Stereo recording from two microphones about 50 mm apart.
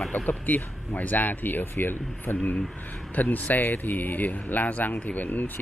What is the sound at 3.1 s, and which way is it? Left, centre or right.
Speech, left.